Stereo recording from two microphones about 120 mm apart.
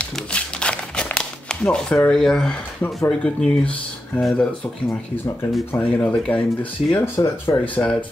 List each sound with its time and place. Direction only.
0.0 s a sound: 10° left (ahead or behind)
2.0 s speech: 5° left (ahead or behind)
4.8 s speech: 20° left (ahead or behind)
7.2 s speech: 20° left (ahead or behind)